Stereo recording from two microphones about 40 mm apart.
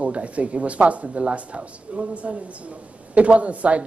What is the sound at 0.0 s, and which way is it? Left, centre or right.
Speech, right.